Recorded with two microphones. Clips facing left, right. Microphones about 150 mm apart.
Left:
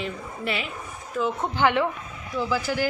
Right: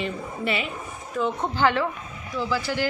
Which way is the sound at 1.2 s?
10° left (ahead or behind).